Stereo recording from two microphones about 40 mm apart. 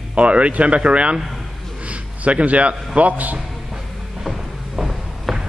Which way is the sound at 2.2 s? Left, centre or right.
Right.